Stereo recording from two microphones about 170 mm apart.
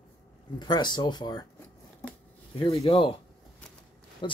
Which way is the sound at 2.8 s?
35° left (ahead or behind).